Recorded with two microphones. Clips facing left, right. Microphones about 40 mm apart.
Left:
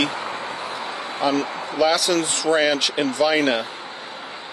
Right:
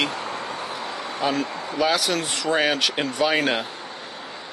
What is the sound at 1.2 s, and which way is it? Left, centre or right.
Speech, centre.